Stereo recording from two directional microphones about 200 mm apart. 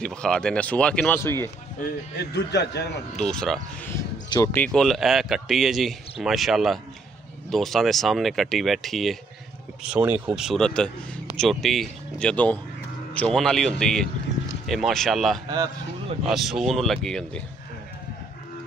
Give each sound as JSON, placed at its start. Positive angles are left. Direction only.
{"t": 0.0, "sound": "speech", "side_deg": 5}
{"t": 2.1, "sound": "a man's voice", "side_deg": 55}
{"t": 3.3, "sound": "speech", "side_deg": 5}
{"t": 4.3, "sound": "speech", "side_deg": 15}